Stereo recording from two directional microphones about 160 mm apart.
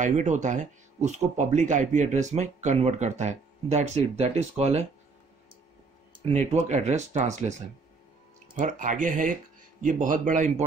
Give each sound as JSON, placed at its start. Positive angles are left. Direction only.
{"t": 0.0, "sound": "speech", "side_deg": -50}
{"t": 6.1, "sound": "speech", "side_deg": -40}
{"t": 8.5, "sound": "speech", "side_deg": -55}